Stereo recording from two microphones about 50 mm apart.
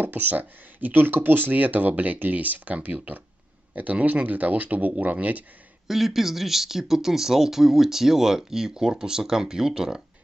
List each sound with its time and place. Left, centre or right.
0.0 s speech: right
5.9 s speech: centre